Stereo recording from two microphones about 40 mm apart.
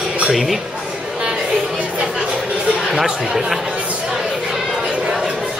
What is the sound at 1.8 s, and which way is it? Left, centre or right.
Music, right.